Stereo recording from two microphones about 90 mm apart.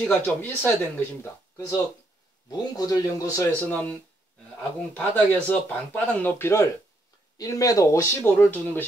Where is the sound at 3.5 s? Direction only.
20° left (ahead or behind).